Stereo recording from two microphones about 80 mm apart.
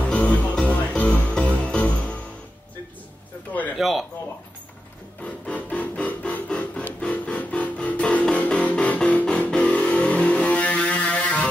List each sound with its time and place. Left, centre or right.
0.1 s music: centre
3.7 s speech: centre
5.2 s music: centre